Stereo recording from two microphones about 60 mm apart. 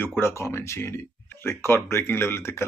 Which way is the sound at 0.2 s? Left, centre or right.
Left.